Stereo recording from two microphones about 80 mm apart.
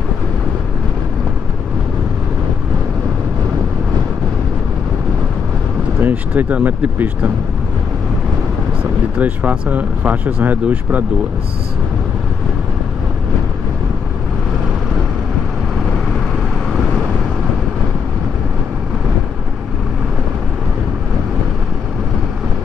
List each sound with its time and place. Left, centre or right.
5.9 s speech: right
9.2 s speech: centre